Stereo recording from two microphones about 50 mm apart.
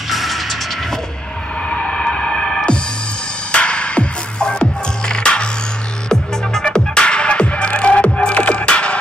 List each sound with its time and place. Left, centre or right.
0.1 s music: centre
1.7 s music: centre